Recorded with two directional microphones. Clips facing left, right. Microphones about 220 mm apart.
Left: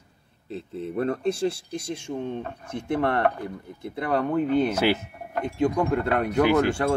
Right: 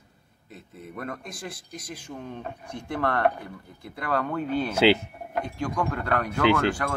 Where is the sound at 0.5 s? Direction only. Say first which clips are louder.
Left 11 dB; 30° left (ahead or behind).